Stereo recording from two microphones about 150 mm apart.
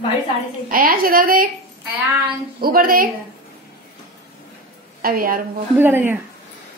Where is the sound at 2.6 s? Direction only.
75° right (ahead or behind).